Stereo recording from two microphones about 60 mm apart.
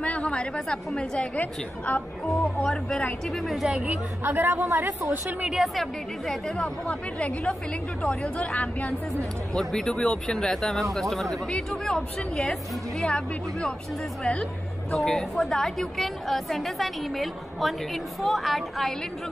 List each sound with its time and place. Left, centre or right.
0.0 s a woman's voice: centre
2.6 s a woman's voice: centre
4.2 s a woman's voice: right
5.5 s a woman's voice: centre
6.6 s speech: centre
9.5 s a woman's voice: centre
15.0 s a woman's voice: centre